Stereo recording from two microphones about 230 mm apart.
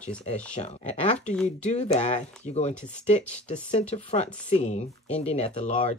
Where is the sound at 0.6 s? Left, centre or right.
Left.